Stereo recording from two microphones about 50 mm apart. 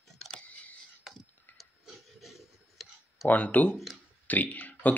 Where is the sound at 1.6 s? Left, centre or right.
Centre.